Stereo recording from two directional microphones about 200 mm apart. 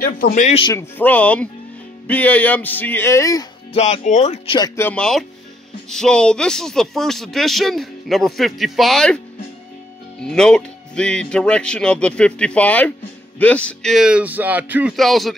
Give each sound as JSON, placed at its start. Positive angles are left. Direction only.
{"t": 0.0, "sound": "a man's voice", "side_deg": 45}
{"t": 0.7, "sound": "speech", "side_deg": 10}
{"t": 3.7, "sound": "speech", "side_deg": 35}
{"t": 4.6, "sound": "speech", "side_deg": 15}
{"t": 10.2, "sound": "speech", "side_deg": 5}